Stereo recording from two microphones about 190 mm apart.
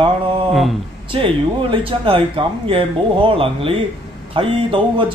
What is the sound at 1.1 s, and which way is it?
Speech, 25° right (ahead or behind).